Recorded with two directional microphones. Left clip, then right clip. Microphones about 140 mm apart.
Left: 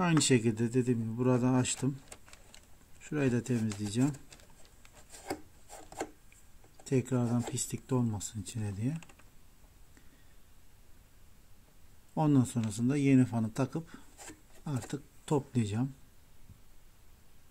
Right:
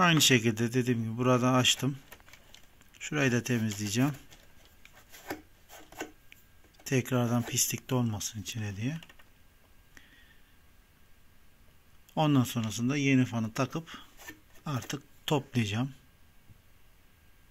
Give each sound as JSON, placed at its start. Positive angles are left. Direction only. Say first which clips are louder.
{"t": 0.0, "sound": "speech", "louder": "right 5 dB", "side_deg": 5}
{"t": 3.0, "sound": "speech", "louder": "right 3 dB", "side_deg": 0}
{"t": 6.8, "sound": "speech", "louder": "right 2 dB", "side_deg": 0}
{"t": 8.2, "sound": "speech", "louder": "right 5 dB", "side_deg": 10}
{"t": 12.2, "sound": "speech", "louder": "right 2 dB", "side_deg": 5}
{"t": 12.7, "sound": "speech", "louder": "even", "side_deg": 20}
{"t": 13.6, "sound": "speech", "louder": "right 3 dB", "side_deg": 5}